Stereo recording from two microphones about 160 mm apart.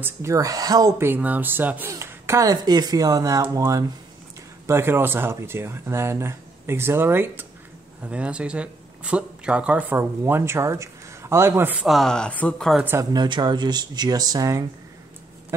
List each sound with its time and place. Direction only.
0.0 s speech: 20° right (ahead or behind); by 12.8 s 5° left (ahead or behind)
12.8 s speech: 15° right (ahead or behind)
13.2 s speech: 25° right (ahead or behind)